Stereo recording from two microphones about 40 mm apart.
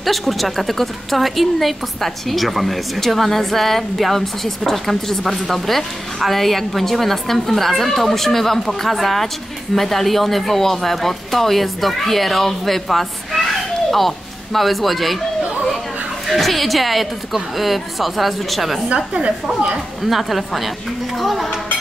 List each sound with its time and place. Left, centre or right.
0.0 s a woman's voice: centre
16.3 s a woman's voice: centre
18.9 s a woman's voice: right
20.0 s a woman's voice: centre